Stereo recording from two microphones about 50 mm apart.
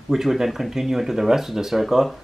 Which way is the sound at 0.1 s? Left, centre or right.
Centre.